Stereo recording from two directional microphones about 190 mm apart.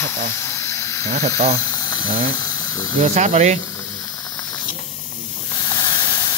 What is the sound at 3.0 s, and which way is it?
Speech, 35° right (ahead or behind).